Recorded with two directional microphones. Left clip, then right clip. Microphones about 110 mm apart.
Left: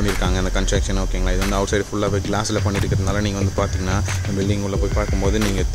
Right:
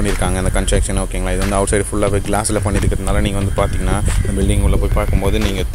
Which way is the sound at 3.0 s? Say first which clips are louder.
Right 3 dB; 15° right (ahead or behind).